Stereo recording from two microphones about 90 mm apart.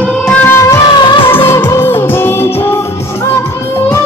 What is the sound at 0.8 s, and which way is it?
Music of bollywood, 60° left (ahead or behind).